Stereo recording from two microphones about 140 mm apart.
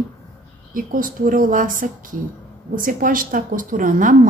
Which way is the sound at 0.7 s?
80° right.